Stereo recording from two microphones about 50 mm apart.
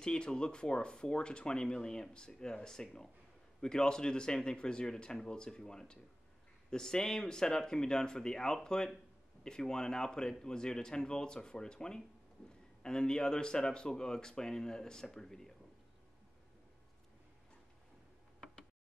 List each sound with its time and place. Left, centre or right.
0.0 s speech: centre